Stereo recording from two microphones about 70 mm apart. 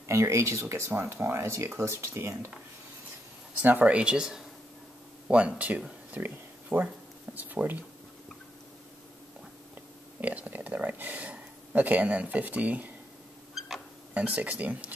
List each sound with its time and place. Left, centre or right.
0.0 s speech: right
3.6 s speech: right
5.6 s speech: centre
6.1 s a sound: right
7.3 s speech: right
10.2 s speech: right
14.1 s speech: centre